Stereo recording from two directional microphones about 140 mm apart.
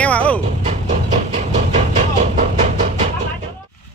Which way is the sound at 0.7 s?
55° right (ahead or behind).